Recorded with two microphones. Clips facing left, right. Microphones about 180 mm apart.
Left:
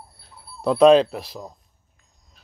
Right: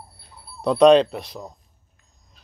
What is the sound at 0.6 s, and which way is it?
Speech, centre (ahead or behind).